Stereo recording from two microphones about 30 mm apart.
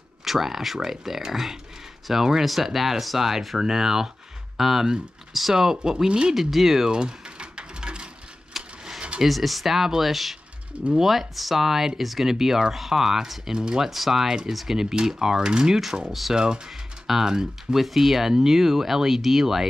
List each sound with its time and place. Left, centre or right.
0.2 s speech: centre
2.4 s speech: centre
6.0 s speech: right
6.3 s speech: centre
6.9 s typing: right
8.5 s a sound: centre
9.2 s speech: centre; by 13.8 s right
13.8 s speech: centre
14.2 s speech: centre
14.5 s speech: centre
14.8 s speech: centre
16.1 s speech: centre
16.3 s speech: right